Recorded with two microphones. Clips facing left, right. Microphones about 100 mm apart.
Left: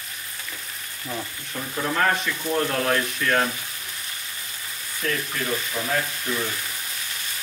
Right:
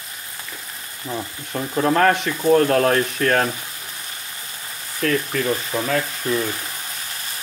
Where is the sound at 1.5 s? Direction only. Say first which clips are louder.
Right 7 dB; 45° right (ahead or behind).